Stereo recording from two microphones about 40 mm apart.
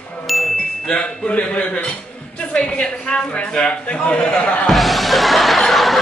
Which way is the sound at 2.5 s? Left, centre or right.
Left.